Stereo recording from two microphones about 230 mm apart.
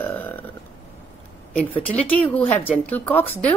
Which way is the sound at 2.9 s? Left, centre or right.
Centre.